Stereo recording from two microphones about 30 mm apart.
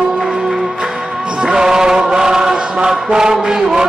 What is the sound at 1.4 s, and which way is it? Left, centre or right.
Chant, right.